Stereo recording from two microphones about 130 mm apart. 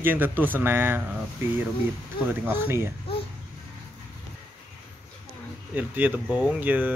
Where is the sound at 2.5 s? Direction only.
15° right (ahead or behind).